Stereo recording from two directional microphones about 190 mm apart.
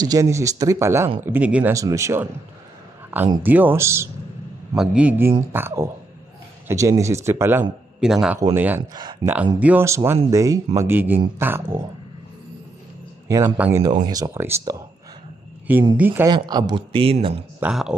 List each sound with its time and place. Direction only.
0.1 s speech: 15° right (ahead or behind)
8.0 s speech: 5° right (ahead or behind)
8.9 s speech: 20° right (ahead or behind)
9.6 s speech: 10° right (ahead or behind)
13.3 s speech: 15° right (ahead or behind)
16.0 s speech: 10° right (ahead or behind); by 17.5 s 30° right (ahead or behind)
17.6 s speech: 5° right (ahead or behind)